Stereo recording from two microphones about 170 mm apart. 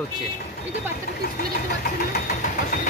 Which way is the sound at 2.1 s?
55° left (ahead or behind).